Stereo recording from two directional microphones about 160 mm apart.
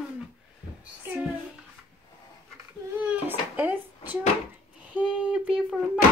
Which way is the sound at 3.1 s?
10° right (ahead or behind).